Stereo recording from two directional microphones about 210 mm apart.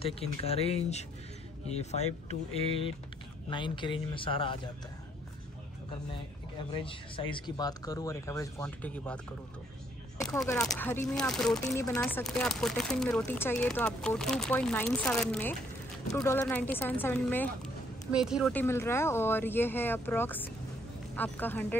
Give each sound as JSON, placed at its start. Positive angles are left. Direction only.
{"t": 0.0, "sound": "speech", "side_deg": 30}
{"t": 6.7, "sound": "speech", "side_deg": 25}
{"t": 10.2, "sound": "speech", "side_deg": 5}
{"t": 11.7, "sound": "speech", "side_deg": 15}
{"t": 12.0, "sound": "speech", "side_deg": 5}
{"t": 18.1, "sound": "speech", "side_deg": 0}
{"t": 18.5, "sound": "speech", "side_deg": 10}